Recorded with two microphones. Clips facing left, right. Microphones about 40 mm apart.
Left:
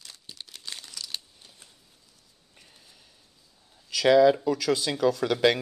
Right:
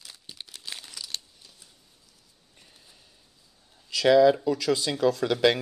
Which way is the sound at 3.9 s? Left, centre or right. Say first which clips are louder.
Even; centre.